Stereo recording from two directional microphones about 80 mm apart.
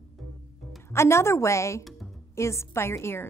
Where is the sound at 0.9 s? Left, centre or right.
Left.